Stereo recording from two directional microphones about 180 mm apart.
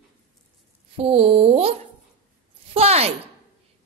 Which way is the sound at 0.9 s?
35° right (ahead or behind).